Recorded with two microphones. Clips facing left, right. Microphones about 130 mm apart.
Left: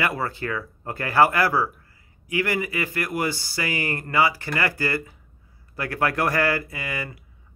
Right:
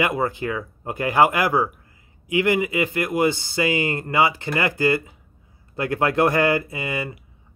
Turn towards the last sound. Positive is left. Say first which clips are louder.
# right 4 dB
turn(degrees=-20)  # may be behind; listen again after turning